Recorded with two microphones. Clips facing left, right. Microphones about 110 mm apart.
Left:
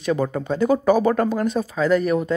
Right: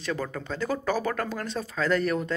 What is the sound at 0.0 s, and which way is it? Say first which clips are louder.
Speech: left 9 dB; 20° left (ahead or behind).